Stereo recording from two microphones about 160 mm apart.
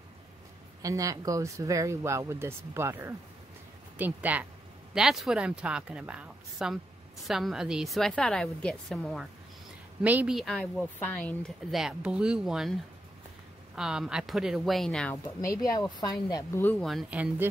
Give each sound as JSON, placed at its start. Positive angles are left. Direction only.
{"t": 0.8, "sound": "speech", "side_deg": -20}
{"t": 13.7, "sound": "speech", "side_deg": -5}
{"t": 15.2, "sound": "speech", "side_deg": 20}
{"t": 16.8, "sound": "speech", "side_deg": -5}